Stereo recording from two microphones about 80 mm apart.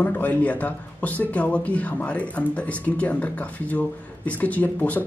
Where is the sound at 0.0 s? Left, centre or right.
Left.